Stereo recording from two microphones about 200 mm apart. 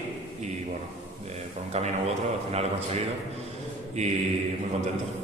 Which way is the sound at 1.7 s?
35° right (ahead or behind).